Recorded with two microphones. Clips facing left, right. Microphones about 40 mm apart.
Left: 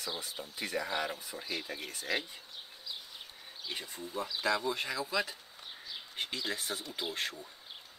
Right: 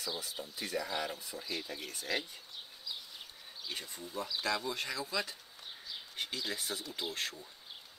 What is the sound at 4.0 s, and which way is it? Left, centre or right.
Speech, left.